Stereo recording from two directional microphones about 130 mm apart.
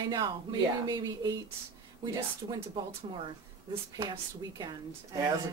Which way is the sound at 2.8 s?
35° right (ahead or behind).